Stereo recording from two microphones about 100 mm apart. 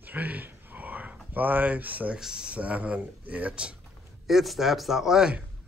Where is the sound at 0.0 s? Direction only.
15° right (ahead or behind).